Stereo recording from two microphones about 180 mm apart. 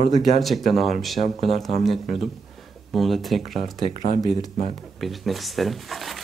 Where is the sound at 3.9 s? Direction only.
45° right (ahead or behind).